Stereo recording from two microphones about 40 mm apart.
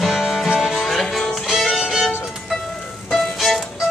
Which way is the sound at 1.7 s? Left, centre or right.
Centre.